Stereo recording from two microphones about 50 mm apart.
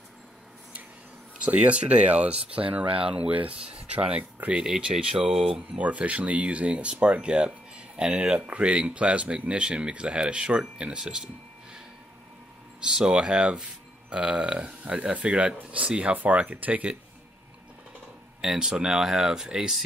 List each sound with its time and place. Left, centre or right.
1.4 s speech: right
4.2 s speech: right
4.6 s speech: centre
5.8 s speech: right
12.8 s speech: centre
18.4 s speech: centre